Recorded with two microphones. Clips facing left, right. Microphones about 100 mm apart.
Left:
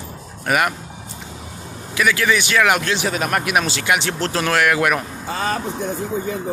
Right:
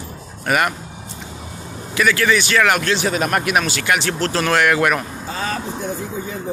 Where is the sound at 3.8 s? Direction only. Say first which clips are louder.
Right 1 dB; 15° left (ahead or behind).